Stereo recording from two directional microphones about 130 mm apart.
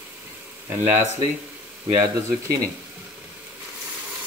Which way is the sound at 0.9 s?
65° right (ahead or behind).